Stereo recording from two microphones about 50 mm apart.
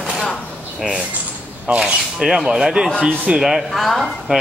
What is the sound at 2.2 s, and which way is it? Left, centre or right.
Speech, centre.